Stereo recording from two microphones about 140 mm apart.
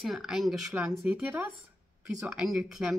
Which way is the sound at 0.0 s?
Centre (ahead or behind).